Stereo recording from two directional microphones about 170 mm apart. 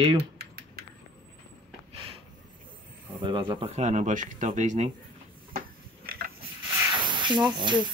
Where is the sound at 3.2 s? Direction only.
30° right (ahead or behind); by 4.9 s 45° right (ahead or behind).